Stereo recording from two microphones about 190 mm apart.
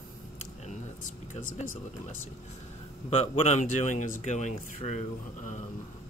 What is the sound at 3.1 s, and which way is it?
Speech, 35° left (ahead or behind).